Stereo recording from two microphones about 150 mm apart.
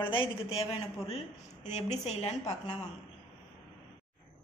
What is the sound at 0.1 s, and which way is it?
A woman's voice, 35° left (ahead or behind).